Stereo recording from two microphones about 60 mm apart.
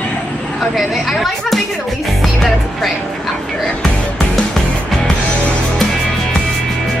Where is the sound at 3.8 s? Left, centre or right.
Centre.